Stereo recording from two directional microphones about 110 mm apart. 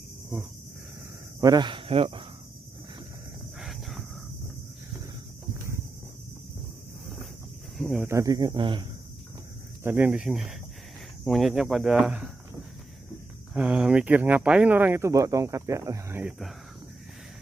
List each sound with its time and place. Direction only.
1.4 s speech: 40° right (ahead or behind)
1.9 s speech: 55° right (ahead or behind)
3.5 s a sound: centre (ahead or behind)
7.7 s speech: centre (ahead or behind)
8.1 s speech: 30° right (ahead or behind); by 8.8 s 50° right (ahead or behind)
9.8 s speech: 15° right (ahead or behind)
13.5 s speech: 10° right (ahead or behind); by 16.2 s 30° right (ahead or behind)